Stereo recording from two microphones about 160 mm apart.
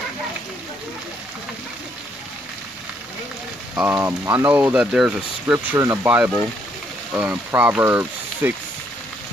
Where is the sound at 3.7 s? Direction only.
15° right (ahead or behind).